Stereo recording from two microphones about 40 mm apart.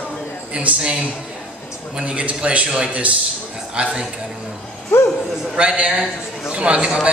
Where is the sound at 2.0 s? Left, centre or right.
Right.